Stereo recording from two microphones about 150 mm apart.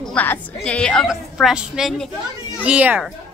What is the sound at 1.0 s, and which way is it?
A woman's voice, 5° right (ahead or behind).